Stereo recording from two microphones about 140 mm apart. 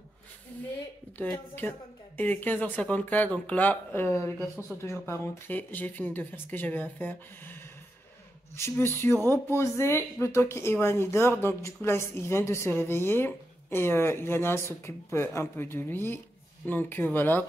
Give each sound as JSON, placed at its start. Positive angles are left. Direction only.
{"t": 1.1, "sound": "speech", "side_deg": 15}